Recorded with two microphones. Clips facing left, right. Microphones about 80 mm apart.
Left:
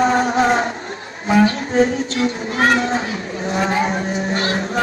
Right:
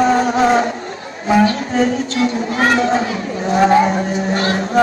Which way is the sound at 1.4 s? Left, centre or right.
Right.